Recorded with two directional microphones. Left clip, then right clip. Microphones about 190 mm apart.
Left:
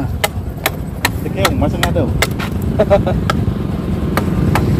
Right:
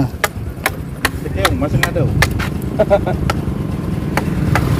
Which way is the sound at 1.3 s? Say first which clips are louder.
Left 1 dB; 25° right (ahead or behind).